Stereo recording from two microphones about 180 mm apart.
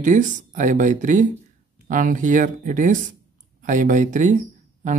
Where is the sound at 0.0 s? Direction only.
45° right (ahead or behind).